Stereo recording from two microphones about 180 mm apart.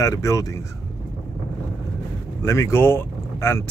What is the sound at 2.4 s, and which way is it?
Speech, 15° left (ahead or behind).